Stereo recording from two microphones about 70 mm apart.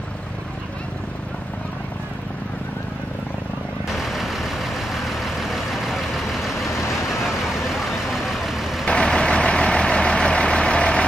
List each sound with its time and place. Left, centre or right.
3.9 s vehicle: centre
6.7 s vehicle: left
7.2 s vehicle: centre
8.8 s vehicle: centre